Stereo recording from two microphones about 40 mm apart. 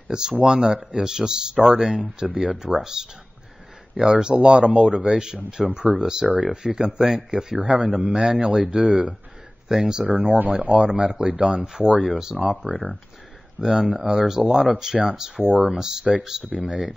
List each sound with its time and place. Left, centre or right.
0.1 s speech: centre
10.4 s speech: right
10.7 s speech: right
13.6 s speech: centre